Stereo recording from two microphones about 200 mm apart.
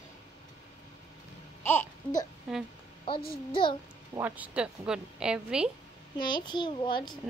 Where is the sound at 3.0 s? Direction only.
25° left (ahead or behind).